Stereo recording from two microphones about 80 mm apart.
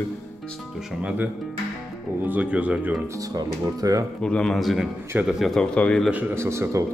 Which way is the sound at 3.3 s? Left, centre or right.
Right.